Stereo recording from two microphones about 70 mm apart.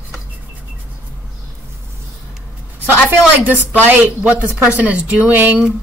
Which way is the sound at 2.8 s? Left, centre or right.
Right.